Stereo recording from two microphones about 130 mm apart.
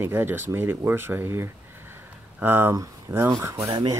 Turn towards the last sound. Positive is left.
turn(degrees=-35)  # may be behind; listen again after turning